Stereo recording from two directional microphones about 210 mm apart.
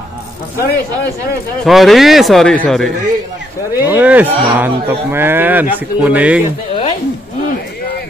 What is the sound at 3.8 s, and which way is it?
Speech, 10° right (ahead or behind).